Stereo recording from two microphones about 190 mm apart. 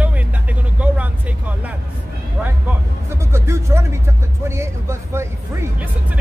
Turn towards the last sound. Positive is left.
turn(degrees=-10)  # may be behind; listen again after turning